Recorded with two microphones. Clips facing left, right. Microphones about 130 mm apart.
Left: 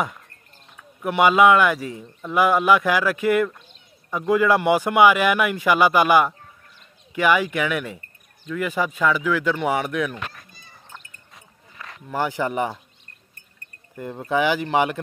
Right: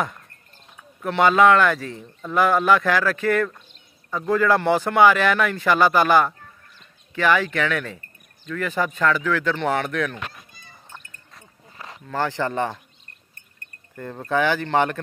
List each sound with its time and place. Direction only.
1.0 s speech: 10° left (ahead or behind)
11.7 s a sound: 30° right (ahead or behind)
12.1 s speech: 15° left (ahead or behind)
13.9 s speech: 10° left (ahead or behind)